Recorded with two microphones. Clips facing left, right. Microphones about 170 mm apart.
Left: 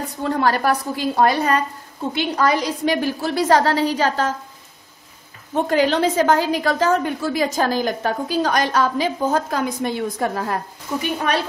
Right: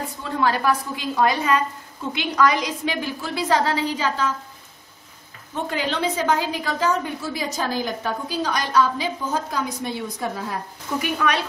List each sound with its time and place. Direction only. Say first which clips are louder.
0.2 s a woman's voice: left 3 dB; 45° left (ahead or behind)
5.5 s a woman's voice: left 8 dB; 45° left (ahead or behind)
7.1 s a woman's voice: left 7 dB; 55° left (ahead or behind)
11.0 s a woman's voice: left 1 dB; 35° left (ahead or behind)